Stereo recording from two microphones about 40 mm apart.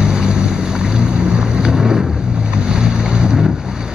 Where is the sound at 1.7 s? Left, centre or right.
Centre.